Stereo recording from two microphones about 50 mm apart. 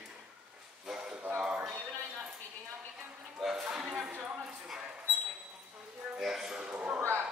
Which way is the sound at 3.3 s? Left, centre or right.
Centre.